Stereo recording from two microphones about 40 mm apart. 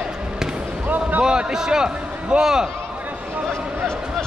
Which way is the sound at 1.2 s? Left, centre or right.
Centre.